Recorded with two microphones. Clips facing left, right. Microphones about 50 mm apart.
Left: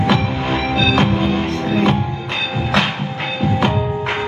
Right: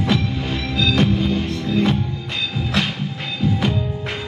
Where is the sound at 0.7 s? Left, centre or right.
Left.